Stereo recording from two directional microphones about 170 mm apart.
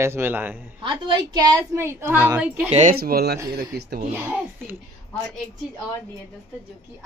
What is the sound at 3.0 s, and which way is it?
Speech, 65° right (ahead or behind).